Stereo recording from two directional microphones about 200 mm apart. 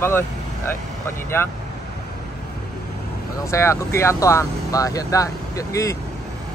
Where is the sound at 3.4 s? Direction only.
15° left (ahead or behind).